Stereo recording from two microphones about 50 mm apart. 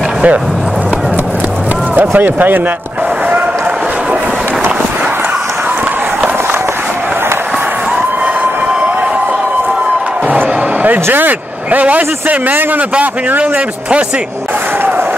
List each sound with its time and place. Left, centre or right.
2.0 s speech: right
10.2 s music: right
11.1 s a man's voice: right